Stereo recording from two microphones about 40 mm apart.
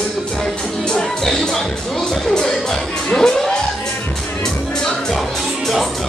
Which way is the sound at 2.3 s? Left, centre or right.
Centre.